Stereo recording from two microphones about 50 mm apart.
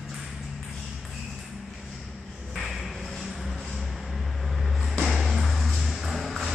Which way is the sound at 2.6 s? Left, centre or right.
Centre.